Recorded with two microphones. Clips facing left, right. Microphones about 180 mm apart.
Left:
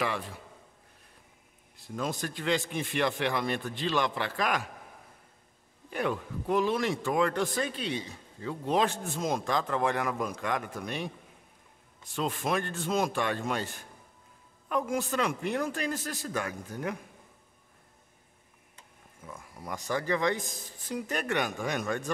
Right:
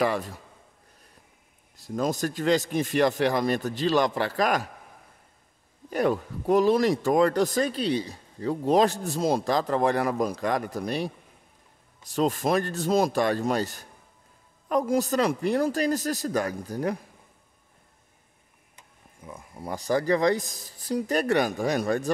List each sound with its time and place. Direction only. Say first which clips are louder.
0.0 s speech: right 7 dB; 40° right (ahead or behind)
1.8 s speech: right 7 dB; 40° right (ahead or behind)
5.9 s speech: right 7 dB; 40° right (ahead or behind)
18.8 s speech: right 2 dB; 15° right (ahead or behind); by 22.1 s 35° right (ahead or behind)